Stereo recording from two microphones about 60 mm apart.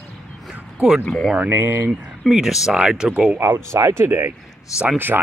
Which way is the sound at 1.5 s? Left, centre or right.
Right.